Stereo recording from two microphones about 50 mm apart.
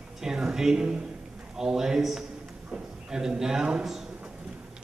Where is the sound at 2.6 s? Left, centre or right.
Right.